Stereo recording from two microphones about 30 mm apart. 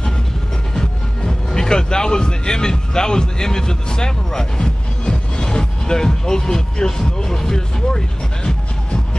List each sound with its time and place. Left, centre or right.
1.2 s speech: left